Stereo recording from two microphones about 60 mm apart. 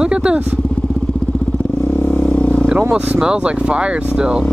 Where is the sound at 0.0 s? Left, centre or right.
Centre.